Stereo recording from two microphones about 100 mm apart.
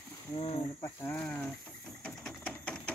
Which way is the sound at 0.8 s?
25° left (ahead or behind).